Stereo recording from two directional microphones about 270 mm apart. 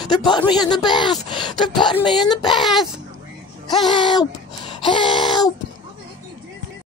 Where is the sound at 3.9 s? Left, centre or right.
Centre.